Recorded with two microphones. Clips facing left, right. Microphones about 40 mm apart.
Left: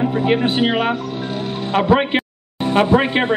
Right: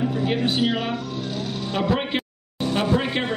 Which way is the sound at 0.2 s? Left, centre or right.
Left.